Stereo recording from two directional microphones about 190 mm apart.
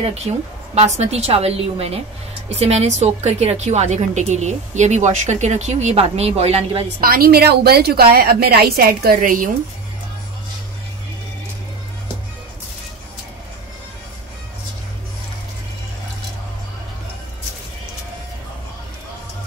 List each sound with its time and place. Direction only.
0.3 s a woman's voice: 30° right (ahead or behind)
7.0 s a woman's voice: 50° right (ahead or behind)